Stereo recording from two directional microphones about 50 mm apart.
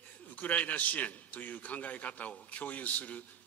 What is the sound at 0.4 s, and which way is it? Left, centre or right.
A man's voice, left.